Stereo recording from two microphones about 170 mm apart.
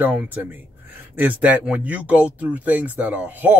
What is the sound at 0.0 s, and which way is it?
Speech, 10° right (ahead or behind).